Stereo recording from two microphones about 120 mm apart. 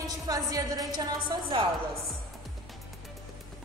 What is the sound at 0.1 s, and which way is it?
A woman's voice, 30° right (ahead or behind).